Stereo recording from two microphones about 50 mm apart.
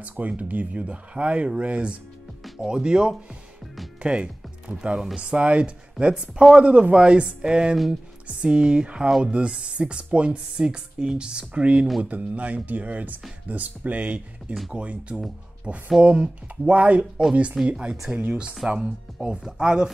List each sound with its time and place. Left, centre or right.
0.0 s speech: right; by 19.9 s centre